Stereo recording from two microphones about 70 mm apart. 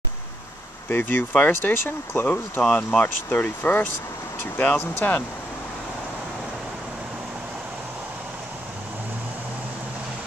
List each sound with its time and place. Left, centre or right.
0.8 s speech: left
2.6 s speech: centre
4.7 s speech: left